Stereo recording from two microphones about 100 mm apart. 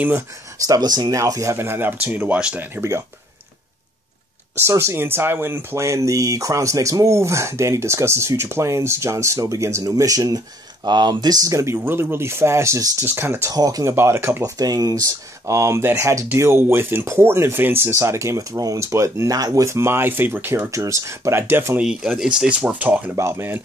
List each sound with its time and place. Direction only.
0.6 s speech: 40° right (ahead or behind); by 3.0 s 25° right (ahead or behind)
4.6 s speech: 25° right (ahead or behind)
13.5 s speech: 40° right (ahead or behind)
13.9 s speech: 25° right (ahead or behind)
21.8 s speech: 5° right (ahead or behind); by 23.6 s 25° right (ahead or behind)